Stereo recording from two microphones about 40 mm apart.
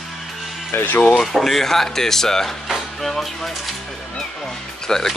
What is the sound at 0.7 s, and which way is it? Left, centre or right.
Speech, left.